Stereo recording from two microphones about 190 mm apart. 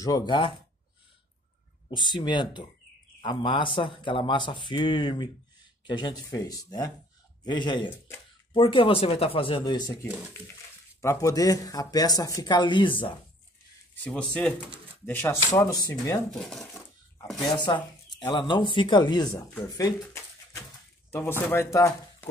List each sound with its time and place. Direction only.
0.0 s a man's voice: 20° left (ahead or behind)
1.9 s a man's voice: 25° left (ahead or behind)
11.0 s a man's voice: 15° left (ahead or behind)
14.0 s speech: 5° left (ahead or behind)
16.3 s speech: centre (ahead or behind)
17.5 s a man's voice: 25° left (ahead or behind)